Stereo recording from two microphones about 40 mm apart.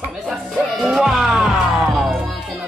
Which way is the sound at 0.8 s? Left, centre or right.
Centre.